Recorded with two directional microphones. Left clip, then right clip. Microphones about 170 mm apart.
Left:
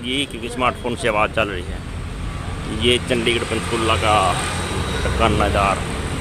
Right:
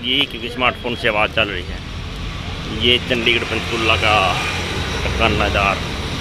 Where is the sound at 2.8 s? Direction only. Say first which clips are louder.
Right 2 dB; 10° left (ahead or behind).